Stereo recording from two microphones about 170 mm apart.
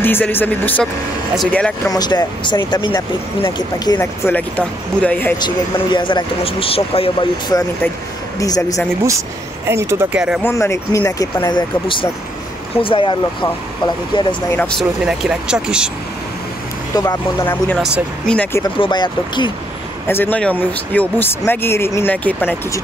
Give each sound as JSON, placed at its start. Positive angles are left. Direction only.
{"t": 0.0, "sound": "speech", "side_deg": 10}
{"t": 1.9, "sound": "speech", "side_deg": 25}
{"t": 4.0, "sound": "speech", "side_deg": 10}
{"t": 5.4, "sound": "speech", "side_deg": 25}
{"t": 9.7, "sound": "speech", "side_deg": -15}
{"t": 10.4, "sound": "speech", "side_deg": 15}
{"t": 14.8, "sound": "speech", "side_deg": -5}
{"t": 16.9, "sound": "speech", "side_deg": 20}
{"t": 17.5, "sound": "speech", "side_deg": 10}
{"t": 18.6, "sound": "speech", "side_deg": 25}
{"t": 20.1, "sound": "speech", "side_deg": 10}